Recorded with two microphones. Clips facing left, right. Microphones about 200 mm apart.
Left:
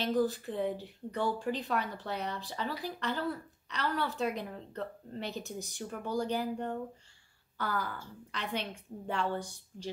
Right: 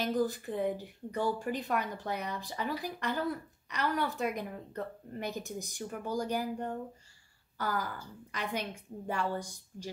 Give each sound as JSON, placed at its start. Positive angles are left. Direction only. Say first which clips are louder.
{"t": 0.0, "sound": "speech", "louder": "left 1 dB", "side_deg": -15}